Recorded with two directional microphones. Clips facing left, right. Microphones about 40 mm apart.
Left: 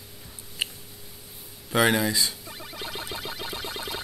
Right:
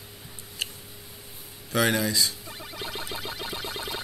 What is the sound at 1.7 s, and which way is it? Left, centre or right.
Speech, centre.